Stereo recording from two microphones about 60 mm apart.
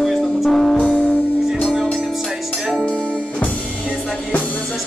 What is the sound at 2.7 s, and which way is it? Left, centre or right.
Music, centre.